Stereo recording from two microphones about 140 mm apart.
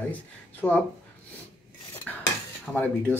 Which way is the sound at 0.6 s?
15° left (ahead or behind).